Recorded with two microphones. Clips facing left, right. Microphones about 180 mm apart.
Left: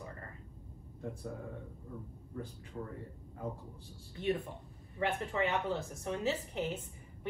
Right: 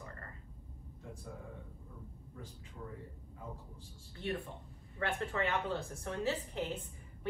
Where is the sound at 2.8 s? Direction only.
45° left (ahead or behind).